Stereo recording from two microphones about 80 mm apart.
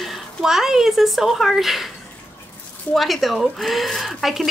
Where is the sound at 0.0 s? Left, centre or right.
Centre.